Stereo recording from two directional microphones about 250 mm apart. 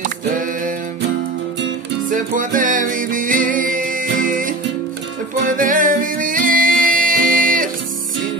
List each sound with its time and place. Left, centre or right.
1.6 s music: right